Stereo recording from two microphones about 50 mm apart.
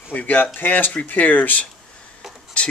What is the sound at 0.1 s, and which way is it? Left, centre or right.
Speech, left.